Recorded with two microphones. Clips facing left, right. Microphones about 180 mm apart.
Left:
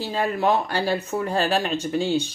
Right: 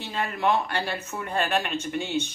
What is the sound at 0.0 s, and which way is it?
Speech, 35° left (ahead or behind).